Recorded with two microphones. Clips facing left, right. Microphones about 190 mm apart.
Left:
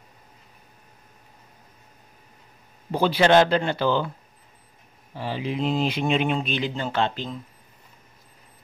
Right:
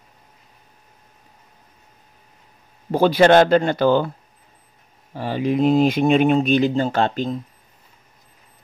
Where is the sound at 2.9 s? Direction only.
45° right (ahead or behind).